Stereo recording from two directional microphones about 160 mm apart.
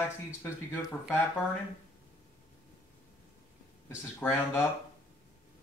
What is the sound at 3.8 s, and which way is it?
Speech, 15° left (ahead or behind).